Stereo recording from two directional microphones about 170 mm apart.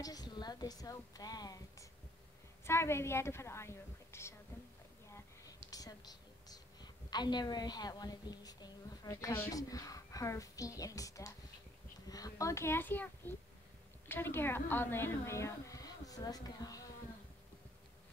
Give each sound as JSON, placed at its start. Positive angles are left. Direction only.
{"t": 0.0, "sound": "a woman's voice", "side_deg": 20}